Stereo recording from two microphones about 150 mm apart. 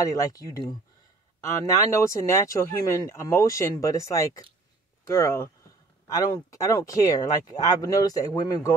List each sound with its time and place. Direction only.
0.0 s speech: 25° left (ahead or behind)